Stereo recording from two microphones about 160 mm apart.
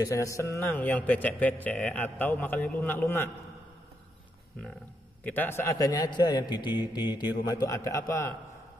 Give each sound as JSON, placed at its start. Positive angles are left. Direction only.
{"t": 0.0, "sound": "a man's voice", "side_deg": 20}
{"t": 5.2, "sound": "a man's voice", "side_deg": 10}